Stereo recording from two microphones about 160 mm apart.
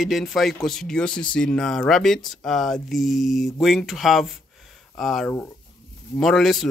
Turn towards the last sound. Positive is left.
turn(degrees=0)  # may be behind; listen again after turning